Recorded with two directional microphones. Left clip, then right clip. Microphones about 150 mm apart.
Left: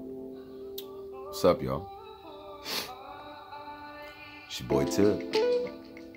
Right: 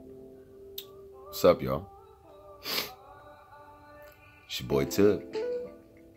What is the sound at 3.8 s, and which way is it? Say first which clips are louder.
Music: left 7 dB; 35° left (ahead or behind).